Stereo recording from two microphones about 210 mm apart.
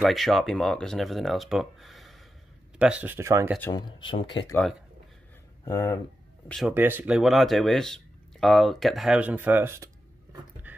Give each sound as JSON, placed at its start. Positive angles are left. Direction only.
{"t": 0.0, "sound": "speech", "side_deg": 0}
{"t": 3.5, "sound": "speech", "side_deg": 15}
{"t": 5.7, "sound": "speech", "side_deg": 20}
{"t": 6.7, "sound": "speech", "side_deg": -10}
{"t": 10.7, "sound": "beatboxing", "side_deg": -10}